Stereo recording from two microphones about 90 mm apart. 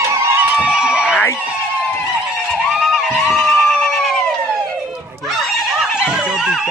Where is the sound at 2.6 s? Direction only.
Centre (ahead or behind).